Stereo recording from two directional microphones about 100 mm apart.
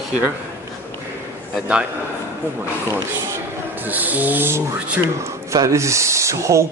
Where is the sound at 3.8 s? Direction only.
15° right (ahead or behind).